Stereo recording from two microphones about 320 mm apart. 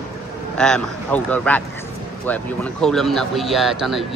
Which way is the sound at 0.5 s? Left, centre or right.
Centre.